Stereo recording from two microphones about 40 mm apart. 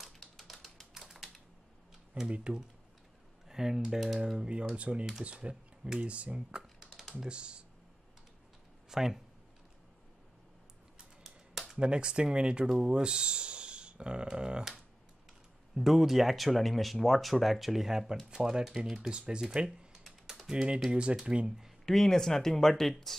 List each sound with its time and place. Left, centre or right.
0.0 s typewriter: centre
2.2 s speech: right
3.4 s speech: centre
4.4 s speech: right
6.6 s typing: centre
7.2 s speech: right
8.9 s speech: centre
11.7 s speech: right
15.7 s speech: centre; by 19.9 s right
20.0 s typing: centre
20.9 s speech: right
21.5 s speech: centre
21.8 s speech: centre